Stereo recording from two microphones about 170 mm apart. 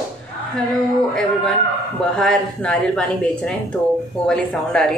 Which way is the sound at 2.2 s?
5° left (ahead or behind).